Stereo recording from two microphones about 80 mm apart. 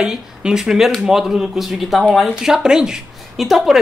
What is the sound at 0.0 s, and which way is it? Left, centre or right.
A woman's voice, centre.